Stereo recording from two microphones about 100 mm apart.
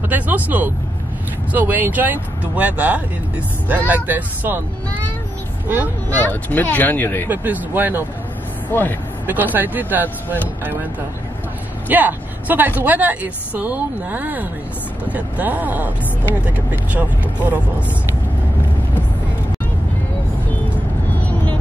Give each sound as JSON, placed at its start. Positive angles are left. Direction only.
{"t": 0.1, "sound": "speech", "side_deg": -15}
{"t": 6.0, "sound": "speech", "side_deg": 20}
{"t": 7.2, "sound": "speech", "side_deg": -15}
{"t": 8.7, "sound": "speech", "side_deg": 20}
{"t": 9.2, "sound": "speech", "side_deg": -20}
{"t": 11.9, "sound": "speech", "side_deg": -15}